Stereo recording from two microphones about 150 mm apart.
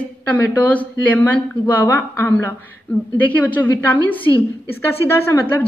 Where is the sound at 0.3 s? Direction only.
10° left (ahead or behind).